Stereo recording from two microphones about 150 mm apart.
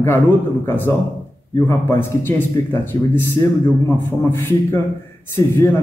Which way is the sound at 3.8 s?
15° left (ahead or behind).